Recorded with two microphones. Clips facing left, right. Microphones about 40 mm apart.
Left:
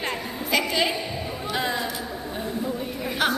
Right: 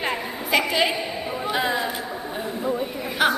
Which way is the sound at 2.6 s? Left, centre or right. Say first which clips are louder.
Right 5 dB; centre.